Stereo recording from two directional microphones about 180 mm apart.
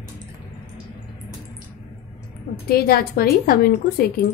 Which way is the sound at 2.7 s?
55° left (ahead or behind).